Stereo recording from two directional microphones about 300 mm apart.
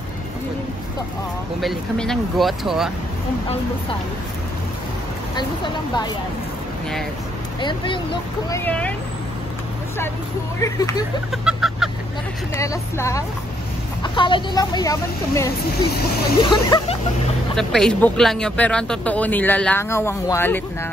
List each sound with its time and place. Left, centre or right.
1.6 s speech: centre
7.6 s speech: centre
10.6 s speech: centre
11.4 s a sound: centre
12.5 s speech: centre
17.6 s speech: centre